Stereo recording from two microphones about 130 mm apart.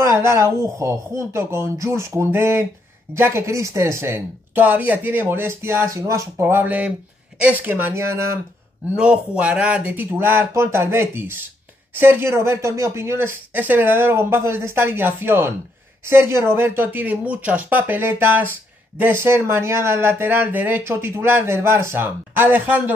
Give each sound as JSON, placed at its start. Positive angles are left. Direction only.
{"t": 0.0, "sound": "speech", "side_deg": -20}
{"t": 8.9, "sound": "speech", "side_deg": -10}